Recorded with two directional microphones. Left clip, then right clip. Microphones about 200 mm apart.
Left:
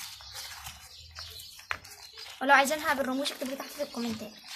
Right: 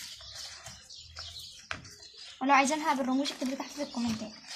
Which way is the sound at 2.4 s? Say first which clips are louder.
Left 2 dB; 20° left (ahead or behind).